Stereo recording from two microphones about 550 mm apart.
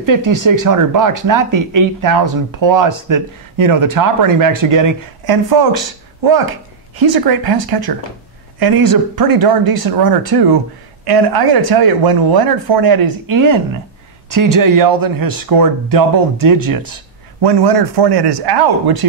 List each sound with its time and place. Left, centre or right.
0.0 s speech: right
7.0 s speech: right